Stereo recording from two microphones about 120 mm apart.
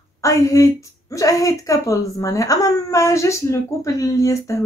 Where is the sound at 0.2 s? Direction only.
25° left (ahead or behind).